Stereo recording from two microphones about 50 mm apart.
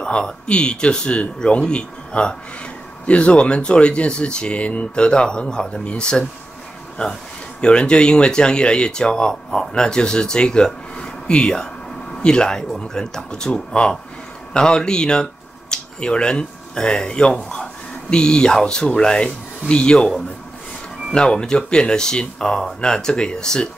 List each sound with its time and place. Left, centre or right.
0.0 s a man's voice: centre
7.6 s speech: centre